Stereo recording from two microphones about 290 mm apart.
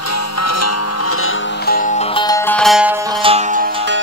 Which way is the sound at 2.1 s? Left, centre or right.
Centre.